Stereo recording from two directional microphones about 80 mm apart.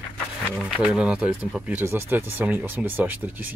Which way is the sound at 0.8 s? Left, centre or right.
Centre.